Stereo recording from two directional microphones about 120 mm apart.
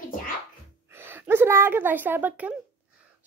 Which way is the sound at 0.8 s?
20° right (ahead or behind).